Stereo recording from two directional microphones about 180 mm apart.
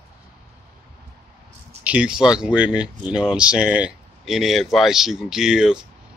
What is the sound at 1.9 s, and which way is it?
Speech, 5° right (ahead or behind).